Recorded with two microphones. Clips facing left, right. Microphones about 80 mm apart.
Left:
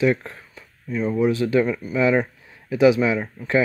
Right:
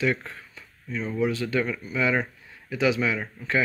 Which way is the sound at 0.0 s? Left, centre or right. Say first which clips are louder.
Left 6 dB; centre.